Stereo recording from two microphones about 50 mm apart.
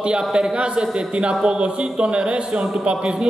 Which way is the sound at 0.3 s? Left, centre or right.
Centre.